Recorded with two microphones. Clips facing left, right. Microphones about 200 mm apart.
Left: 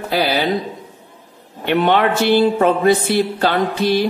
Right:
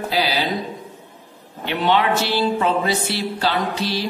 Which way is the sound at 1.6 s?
55° left (ahead or behind).